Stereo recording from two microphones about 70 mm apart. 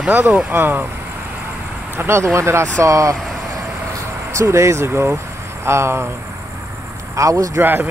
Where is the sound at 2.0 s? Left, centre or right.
Right.